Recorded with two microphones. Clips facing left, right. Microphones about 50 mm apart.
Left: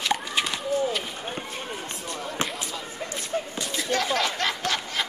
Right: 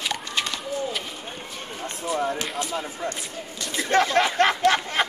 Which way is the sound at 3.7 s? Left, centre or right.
Right.